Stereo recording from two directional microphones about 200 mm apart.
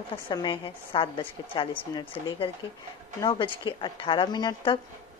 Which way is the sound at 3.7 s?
25° left (ahead or behind).